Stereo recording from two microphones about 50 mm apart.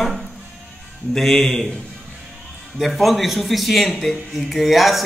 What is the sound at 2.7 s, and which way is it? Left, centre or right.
Speech, centre.